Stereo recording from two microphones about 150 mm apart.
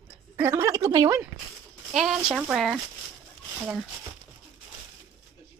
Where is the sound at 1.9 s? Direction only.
5° right (ahead or behind).